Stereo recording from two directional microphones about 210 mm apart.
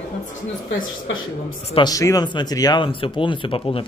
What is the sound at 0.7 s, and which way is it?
Speech, 70° left (ahead or behind).